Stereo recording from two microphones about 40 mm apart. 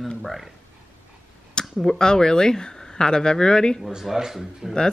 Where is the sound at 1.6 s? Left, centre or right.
Centre.